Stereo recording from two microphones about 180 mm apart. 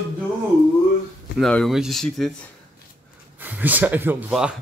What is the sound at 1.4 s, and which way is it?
Speech, 5° left (ahead or behind).